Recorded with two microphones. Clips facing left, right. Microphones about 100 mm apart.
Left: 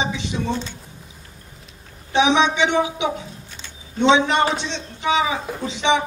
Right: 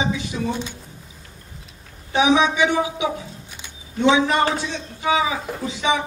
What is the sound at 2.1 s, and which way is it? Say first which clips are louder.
A man's voice: even; 20° left (ahead or behind).